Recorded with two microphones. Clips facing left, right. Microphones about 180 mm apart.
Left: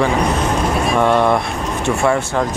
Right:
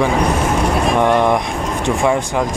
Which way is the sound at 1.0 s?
15° right (ahead or behind).